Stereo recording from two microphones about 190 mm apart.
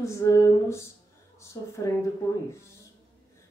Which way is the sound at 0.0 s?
15° left (ahead or behind).